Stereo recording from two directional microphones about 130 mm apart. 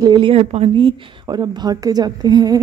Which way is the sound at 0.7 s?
40° right (ahead or behind).